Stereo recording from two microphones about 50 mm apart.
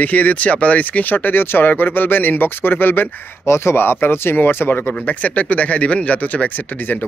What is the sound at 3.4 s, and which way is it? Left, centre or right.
Speech, left.